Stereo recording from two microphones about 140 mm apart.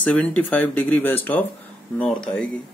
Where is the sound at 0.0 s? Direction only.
10° left (ahead or behind).